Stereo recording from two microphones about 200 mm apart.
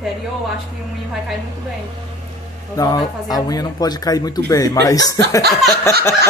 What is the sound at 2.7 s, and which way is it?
Speech, 20° left (ahead or behind).